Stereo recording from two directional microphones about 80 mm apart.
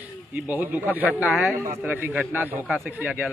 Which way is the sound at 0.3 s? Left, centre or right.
Right.